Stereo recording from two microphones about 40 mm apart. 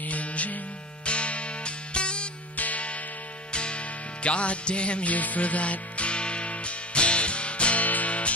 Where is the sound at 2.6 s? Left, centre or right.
Left.